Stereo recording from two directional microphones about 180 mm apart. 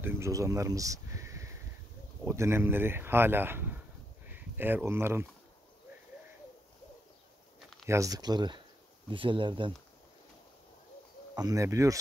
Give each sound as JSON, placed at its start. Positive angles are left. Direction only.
{"t": 0.0, "sound": "a sound", "side_deg": -15}
{"t": 2.2, "sound": "speech", "side_deg": -15}
{"t": 7.9, "sound": "speech", "side_deg": -20}
{"t": 11.3, "sound": "speech", "side_deg": -20}